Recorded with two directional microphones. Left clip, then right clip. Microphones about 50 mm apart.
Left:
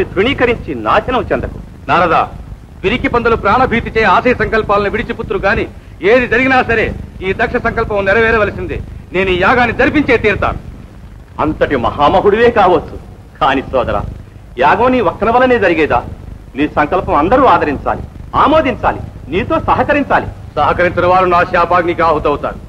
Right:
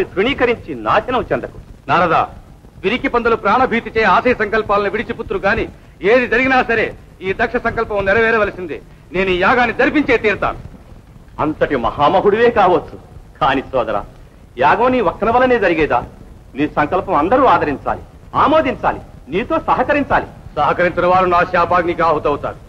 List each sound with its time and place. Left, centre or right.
0.0 s a man's voice: left